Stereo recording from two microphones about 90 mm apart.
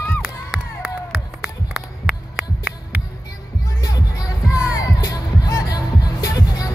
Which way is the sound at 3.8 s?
40° left (ahead or behind).